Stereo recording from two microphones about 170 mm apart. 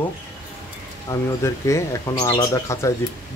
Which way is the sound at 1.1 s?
15° left (ahead or behind).